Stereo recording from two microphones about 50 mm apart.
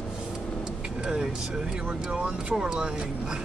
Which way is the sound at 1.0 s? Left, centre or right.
Centre.